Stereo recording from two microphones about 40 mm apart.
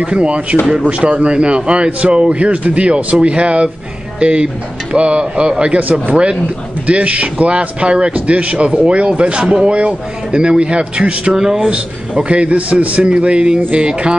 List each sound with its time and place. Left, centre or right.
0.0 s a man's voice: right
6.9 s a man's voice: right
11.3 s speech: centre
11.7 s a man's voice: right